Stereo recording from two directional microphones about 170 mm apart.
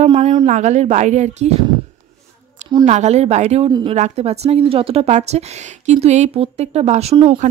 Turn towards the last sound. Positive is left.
turn(degrees=-30)  # may be behind; listen again after turning